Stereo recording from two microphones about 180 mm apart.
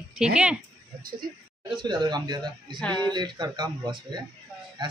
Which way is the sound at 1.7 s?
25° right (ahead or behind).